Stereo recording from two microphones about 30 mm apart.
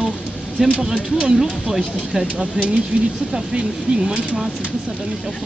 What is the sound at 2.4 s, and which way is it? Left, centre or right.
Speech, right.